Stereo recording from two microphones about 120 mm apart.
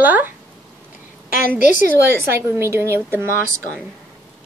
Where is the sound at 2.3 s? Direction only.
20° right (ahead or behind).